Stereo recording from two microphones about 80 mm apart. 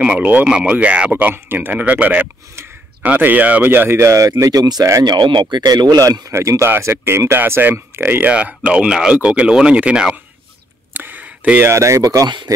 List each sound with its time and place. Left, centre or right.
0.0 s speech: centre; by 4.3 s right
4.4 s speech: right
5.0 s speech: right
5.7 s speech: right
6.3 s speech: right
8.3 s speech: centre
10.9 s a sound: right
11.6 s speech: right